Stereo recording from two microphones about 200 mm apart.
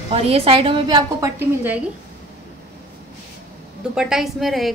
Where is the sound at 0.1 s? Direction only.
30° right (ahead or behind); by 1.8 s 10° right (ahead or behind).